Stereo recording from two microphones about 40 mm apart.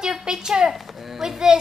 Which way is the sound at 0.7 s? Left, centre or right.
Centre.